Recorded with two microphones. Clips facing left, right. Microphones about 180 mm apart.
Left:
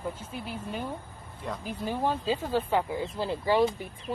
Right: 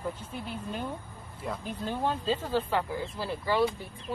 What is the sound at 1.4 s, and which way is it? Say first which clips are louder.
Speech: even; centre (ahead or behind).